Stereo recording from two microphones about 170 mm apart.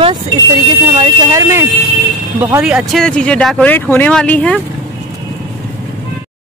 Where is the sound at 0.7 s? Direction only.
25° right (ahead or behind).